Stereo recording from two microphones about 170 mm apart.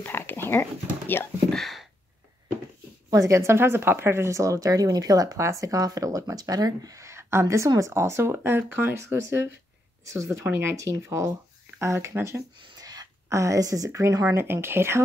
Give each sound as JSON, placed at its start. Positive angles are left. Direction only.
{"t": 0.0, "sound": "speech", "side_deg": 10}
{"t": 1.6, "sound": "a sound", "side_deg": 0}
{"t": 3.1, "sound": "speech", "side_deg": -20}